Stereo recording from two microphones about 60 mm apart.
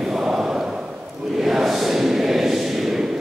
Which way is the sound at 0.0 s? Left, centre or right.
Centre.